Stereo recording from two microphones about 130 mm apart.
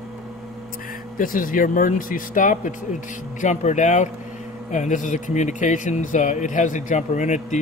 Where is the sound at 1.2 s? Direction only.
90° left.